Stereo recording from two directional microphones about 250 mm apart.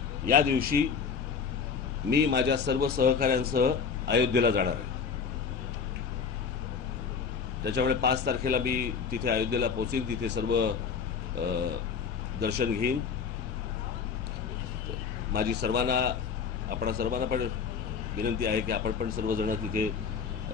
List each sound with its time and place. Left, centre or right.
0.3 s a man's voice: right
2.0 s a man's voice: right
7.6 s a man's voice: right
11.4 s a sound: right
12.4 s a man's voice: right
15.3 s a man's voice: right
18.4 s a man's voice: right